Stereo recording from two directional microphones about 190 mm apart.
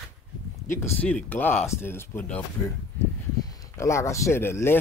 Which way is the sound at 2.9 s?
20° left (ahead or behind).